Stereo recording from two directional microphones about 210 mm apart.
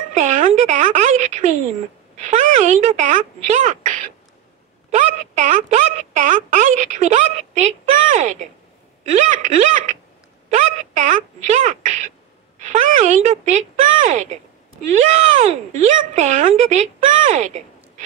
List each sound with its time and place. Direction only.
0.1 s a sound: 35° right (ahead or behind)
2.1 s speech: 35° right (ahead or behind)
15.8 s speech: 35° right (ahead or behind)